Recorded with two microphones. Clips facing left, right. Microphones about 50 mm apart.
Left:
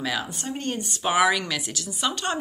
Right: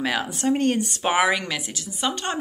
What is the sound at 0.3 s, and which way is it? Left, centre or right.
Speech, right.